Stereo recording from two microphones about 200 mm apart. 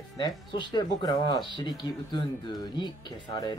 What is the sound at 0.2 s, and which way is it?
Speech, 20° left (ahead or behind).